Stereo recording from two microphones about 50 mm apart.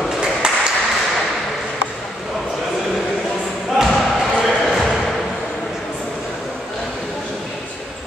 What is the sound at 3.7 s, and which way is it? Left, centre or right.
Basketball bounce, centre.